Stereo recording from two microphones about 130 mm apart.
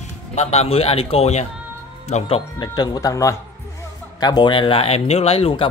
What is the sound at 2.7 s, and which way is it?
Speech, 30° left (ahead or behind).